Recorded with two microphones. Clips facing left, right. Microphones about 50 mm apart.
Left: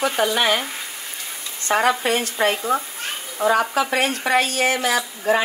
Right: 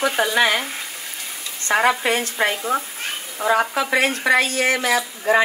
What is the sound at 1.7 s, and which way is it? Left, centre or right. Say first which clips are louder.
Speech: right 1 dB; right.